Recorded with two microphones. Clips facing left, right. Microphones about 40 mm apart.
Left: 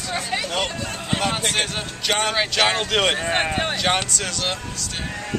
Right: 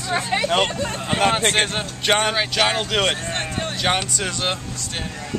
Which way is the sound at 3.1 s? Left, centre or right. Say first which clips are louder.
Left 5 dB; left.